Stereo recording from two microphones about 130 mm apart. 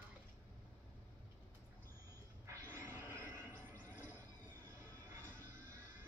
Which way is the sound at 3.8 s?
15° left (ahead or behind).